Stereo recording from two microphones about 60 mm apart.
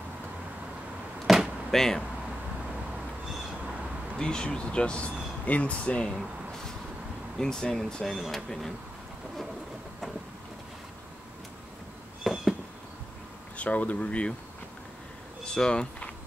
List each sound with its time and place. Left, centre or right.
1.2 s a sound: centre
1.8 s speech: centre
4.2 s speech: centre
6.0 s speech: centre
12.2 s cat: centre
13.6 s speech: left
15.4 s speech: centre